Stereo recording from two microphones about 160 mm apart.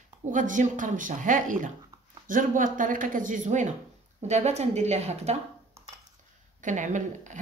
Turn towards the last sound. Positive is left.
turn(degrees=-50)  # may be behind; listen again after turning